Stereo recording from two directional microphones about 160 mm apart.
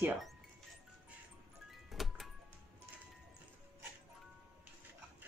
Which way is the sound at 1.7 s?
Centre (ahead or behind).